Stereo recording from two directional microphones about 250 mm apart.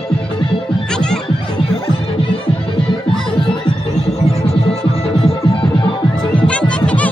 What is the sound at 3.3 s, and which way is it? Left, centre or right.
Music, left.